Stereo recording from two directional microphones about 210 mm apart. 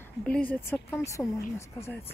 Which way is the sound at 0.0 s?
5° left (ahead or behind).